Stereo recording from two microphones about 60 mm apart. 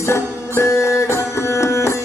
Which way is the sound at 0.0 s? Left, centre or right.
Left.